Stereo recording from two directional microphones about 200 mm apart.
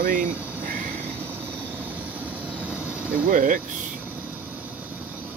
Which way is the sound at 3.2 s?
45° right (ahead or behind).